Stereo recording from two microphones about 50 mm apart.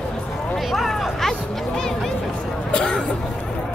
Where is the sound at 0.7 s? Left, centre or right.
Centre; by 3.0 s left.